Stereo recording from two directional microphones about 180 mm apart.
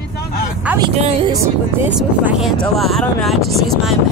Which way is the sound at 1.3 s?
15° right (ahead or behind).